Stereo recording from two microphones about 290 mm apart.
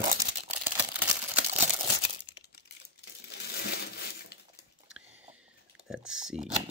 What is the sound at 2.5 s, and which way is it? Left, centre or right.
Coin, left.